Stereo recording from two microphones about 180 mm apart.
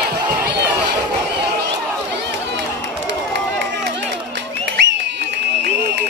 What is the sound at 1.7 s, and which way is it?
Run, 75° right (ahead or behind).